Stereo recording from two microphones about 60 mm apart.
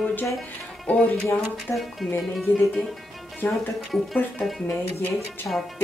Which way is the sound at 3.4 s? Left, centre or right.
Left.